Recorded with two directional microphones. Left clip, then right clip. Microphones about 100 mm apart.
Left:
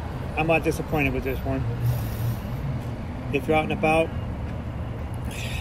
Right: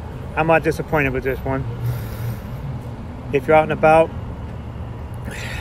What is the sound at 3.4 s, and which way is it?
Speech, 35° right (ahead or behind).